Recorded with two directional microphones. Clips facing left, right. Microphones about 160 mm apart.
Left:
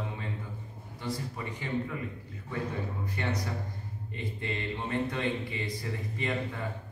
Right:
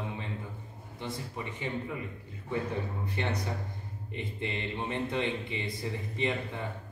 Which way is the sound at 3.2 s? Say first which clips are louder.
Even; 20° right (ahead or behind).